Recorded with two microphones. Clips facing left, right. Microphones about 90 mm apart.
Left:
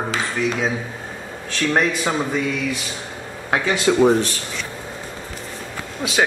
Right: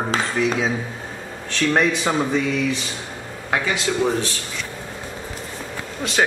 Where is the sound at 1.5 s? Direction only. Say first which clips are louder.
Right 1 dB; 5° left (ahead or behind).